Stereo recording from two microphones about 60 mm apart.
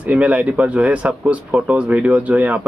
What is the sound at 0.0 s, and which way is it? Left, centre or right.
A man's voice, right.